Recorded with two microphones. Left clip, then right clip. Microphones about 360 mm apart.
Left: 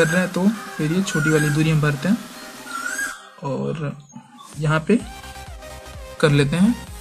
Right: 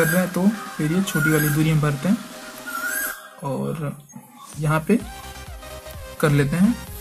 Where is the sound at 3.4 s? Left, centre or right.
Centre.